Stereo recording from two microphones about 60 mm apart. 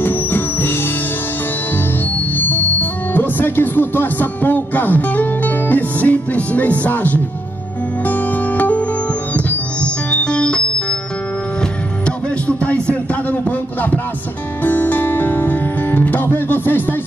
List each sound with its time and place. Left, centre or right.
0.0 s music: left
2.1 s speech: left
8.0 s music: left
12.4 s music: left